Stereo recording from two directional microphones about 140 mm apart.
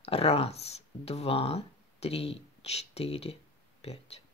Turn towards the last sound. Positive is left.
turn(degrees=45)  # may be behind; listen again after turning